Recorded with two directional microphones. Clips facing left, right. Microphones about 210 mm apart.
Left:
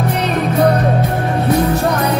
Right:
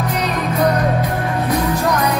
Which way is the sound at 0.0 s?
30° left (ahead or behind).